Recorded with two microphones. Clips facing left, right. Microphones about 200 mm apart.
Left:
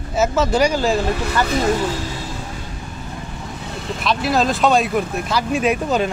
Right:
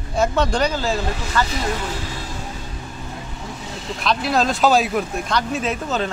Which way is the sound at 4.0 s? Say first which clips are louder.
Left 1 dB; centre (ahead or behind).